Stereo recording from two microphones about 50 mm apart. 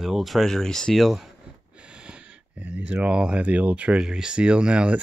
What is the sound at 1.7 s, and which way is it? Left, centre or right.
Speech, right.